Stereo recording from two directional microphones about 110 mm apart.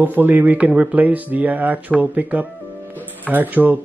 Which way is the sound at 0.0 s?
15° right (ahead or behind).